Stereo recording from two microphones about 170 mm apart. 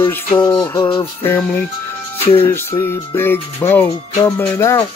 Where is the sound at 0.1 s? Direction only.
10° left (ahead or behind).